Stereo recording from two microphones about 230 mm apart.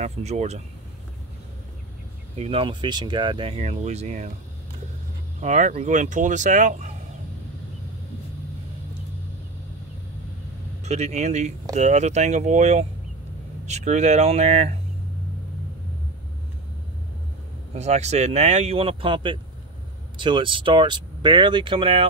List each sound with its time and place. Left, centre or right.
0.0 s speech: right
2.3 s speech: right
5.4 s speech: right
10.8 s speech: right
17.7 s speech: right